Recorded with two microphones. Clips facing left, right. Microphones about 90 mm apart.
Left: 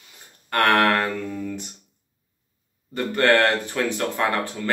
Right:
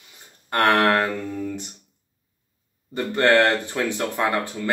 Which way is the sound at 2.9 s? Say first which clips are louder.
Right 1 dB; 20° right (ahead or behind).